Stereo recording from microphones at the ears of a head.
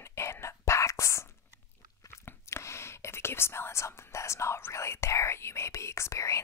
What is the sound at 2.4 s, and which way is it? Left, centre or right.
Speech, left.